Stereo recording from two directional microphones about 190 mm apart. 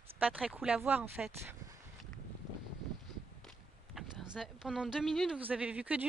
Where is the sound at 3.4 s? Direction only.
Centre (ahead or behind).